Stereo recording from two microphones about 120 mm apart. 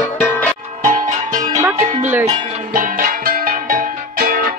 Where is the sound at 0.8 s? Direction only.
90° right.